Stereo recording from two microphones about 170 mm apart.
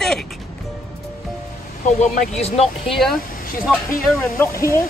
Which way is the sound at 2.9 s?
Centre (ahead or behind).